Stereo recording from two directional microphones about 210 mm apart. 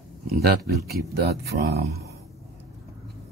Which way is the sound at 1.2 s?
50° right (ahead or behind).